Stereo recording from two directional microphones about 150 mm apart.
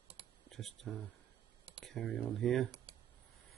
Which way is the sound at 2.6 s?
40° right (ahead or behind).